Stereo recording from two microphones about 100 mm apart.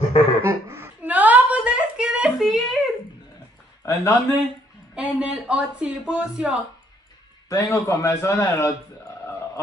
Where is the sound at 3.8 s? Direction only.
35° left (ahead or behind).